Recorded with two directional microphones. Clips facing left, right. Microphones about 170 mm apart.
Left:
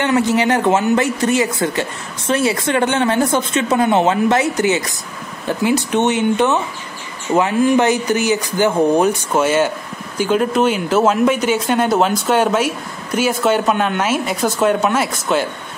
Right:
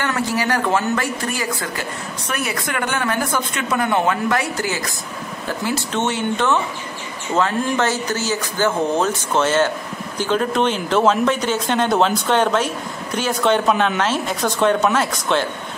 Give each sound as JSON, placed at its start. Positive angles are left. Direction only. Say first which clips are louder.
{"t": 0.0, "sound": "speech", "louder": "left 6 dB", "side_deg": 20}